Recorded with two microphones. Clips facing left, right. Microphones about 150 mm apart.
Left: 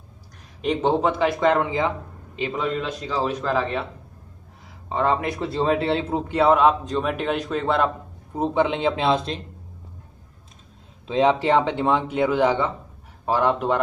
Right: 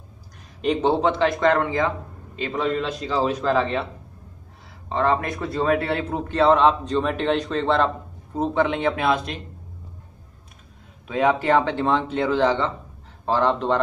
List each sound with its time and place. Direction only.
0.6 s a man's voice: centre (ahead or behind)
2.5 s speech: 5° left (ahead or behind)
4.8 s a man's voice: 15° left (ahead or behind)
11.1 s a man's voice: 25° left (ahead or behind)